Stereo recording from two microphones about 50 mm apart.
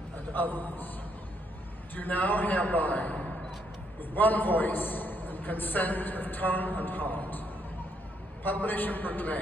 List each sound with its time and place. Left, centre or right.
0.3 s a man's voice: left
2.0 s a man's voice: left
8.5 s a man's voice: left